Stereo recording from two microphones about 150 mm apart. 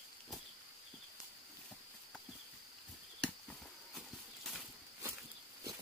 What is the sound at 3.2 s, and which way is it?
Horse, centre (ahead or behind).